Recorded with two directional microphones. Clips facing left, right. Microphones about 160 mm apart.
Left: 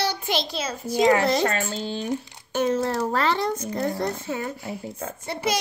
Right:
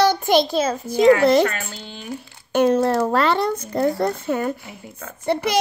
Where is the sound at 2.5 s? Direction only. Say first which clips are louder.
Right 6 dB; 65° right (ahead or behind).